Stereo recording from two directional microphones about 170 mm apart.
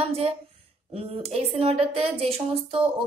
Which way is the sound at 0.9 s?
35° right (ahead or behind).